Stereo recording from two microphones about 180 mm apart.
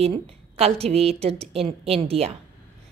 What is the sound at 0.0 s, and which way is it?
A woman's voice, 35° right (ahead or behind).